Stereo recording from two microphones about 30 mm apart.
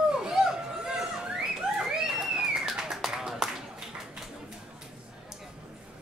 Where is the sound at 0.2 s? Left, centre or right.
Right.